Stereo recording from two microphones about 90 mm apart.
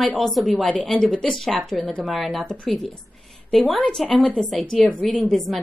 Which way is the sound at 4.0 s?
5° left (ahead or behind).